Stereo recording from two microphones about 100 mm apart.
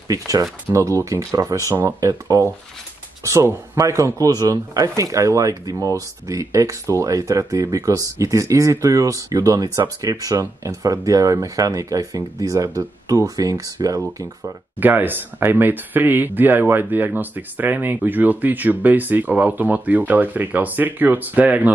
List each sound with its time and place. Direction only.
0.1 s speech: 35° right (ahead or behind)
14.4 s speech: 20° right (ahead or behind)